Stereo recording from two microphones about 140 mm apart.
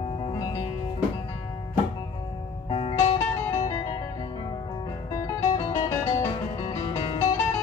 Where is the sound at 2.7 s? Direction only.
45° left (ahead or behind).